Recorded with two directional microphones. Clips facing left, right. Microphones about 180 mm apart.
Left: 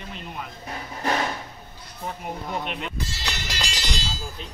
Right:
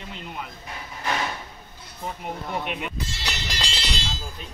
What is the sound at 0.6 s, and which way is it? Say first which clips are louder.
Speech: left 5 dB; 40° left (ahead or behind).